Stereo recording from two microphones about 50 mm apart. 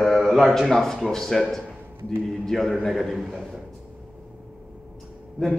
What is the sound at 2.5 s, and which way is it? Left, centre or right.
Speech, centre.